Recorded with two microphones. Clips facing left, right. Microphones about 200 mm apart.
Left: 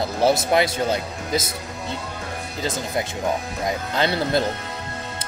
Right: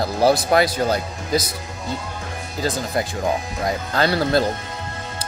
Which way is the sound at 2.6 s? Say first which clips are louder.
Right 3 dB; 20° left (ahead or behind).